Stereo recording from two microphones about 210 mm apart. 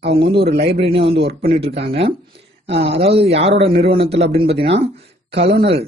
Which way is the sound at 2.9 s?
30° right (ahead or behind).